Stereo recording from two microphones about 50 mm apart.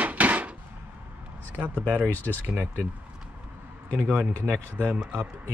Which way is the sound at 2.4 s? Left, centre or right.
Right.